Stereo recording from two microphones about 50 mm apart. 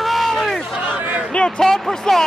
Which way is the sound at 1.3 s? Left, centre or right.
Centre.